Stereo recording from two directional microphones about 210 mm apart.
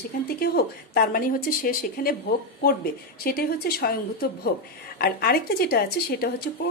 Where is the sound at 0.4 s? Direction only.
45° left (ahead or behind).